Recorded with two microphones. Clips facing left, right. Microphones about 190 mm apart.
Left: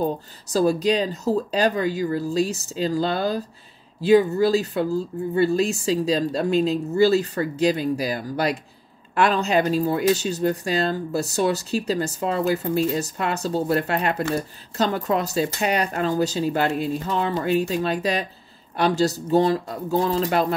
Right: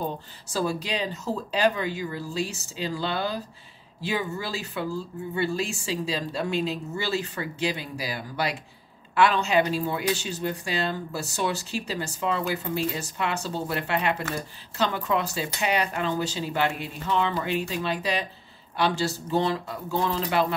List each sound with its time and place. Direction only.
0.0 s speech: 40° left (ahead or behind)